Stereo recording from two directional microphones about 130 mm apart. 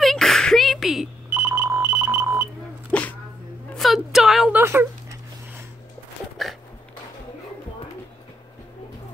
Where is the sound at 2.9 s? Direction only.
10° left (ahead or behind).